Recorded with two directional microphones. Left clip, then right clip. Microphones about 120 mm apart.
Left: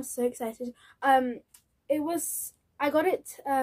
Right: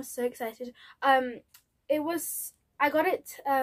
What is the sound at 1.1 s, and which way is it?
A woman's voice, 35° left (ahead or behind).